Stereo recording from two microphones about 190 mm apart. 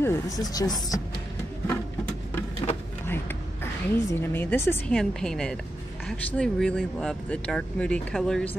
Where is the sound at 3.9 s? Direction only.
10° left (ahead or behind).